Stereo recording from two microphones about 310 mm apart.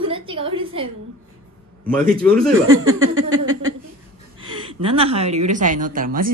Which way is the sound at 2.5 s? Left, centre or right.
Right.